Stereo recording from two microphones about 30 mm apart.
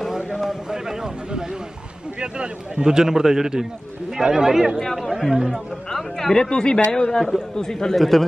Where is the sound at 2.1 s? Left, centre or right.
Right.